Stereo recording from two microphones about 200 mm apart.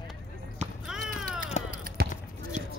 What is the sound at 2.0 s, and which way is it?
Basketball bounce, 50° right (ahead or behind).